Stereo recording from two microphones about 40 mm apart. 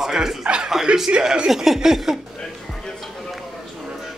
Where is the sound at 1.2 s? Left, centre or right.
Centre.